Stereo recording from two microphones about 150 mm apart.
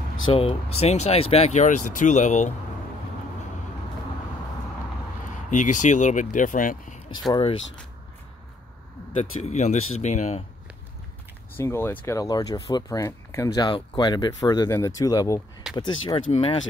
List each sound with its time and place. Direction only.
0.3 s speech: 40° left (ahead or behind)
5.5 s speech: 55° left (ahead or behind)
9.1 s speech: 50° left (ahead or behind)
11.5 s speech: 15° left (ahead or behind)
12.2 s speech: 25° left (ahead or behind)
16.3 s speech: 45° left (ahead or behind)